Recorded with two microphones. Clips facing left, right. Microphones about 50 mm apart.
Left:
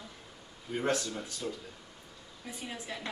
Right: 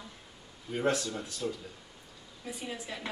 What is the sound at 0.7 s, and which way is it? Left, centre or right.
Speech, centre.